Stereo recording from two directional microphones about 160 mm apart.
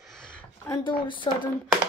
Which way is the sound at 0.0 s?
5° left (ahead or behind).